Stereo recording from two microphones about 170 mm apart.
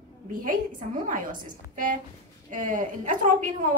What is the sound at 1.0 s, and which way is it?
A woman's voice, 55° right (ahead or behind).